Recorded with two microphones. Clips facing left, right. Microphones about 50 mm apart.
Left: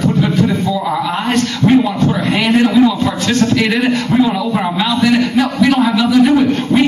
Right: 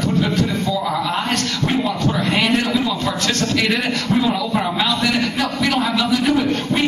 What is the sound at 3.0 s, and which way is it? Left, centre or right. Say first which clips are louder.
A man's voice: left 6 dB; left.